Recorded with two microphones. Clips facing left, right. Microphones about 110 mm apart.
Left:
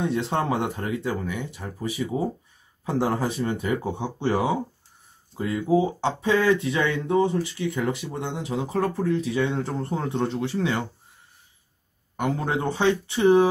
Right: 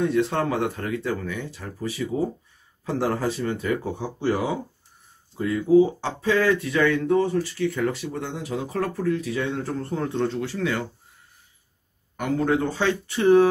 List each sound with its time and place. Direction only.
0.0 s speech: 25° left (ahead or behind)
5.5 s speech: 20° left (ahead or behind)
12.2 s speech: 20° left (ahead or behind)